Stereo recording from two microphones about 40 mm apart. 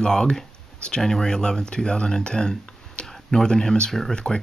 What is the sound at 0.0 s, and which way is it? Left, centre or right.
Speech, centre.